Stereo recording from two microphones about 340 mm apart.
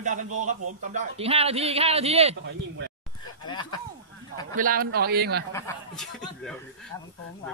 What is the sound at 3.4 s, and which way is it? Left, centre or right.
Speech, centre.